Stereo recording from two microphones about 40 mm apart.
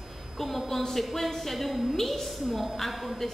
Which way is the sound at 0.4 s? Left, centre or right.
Centre.